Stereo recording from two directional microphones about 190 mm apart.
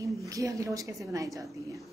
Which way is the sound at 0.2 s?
15° right (ahead or behind).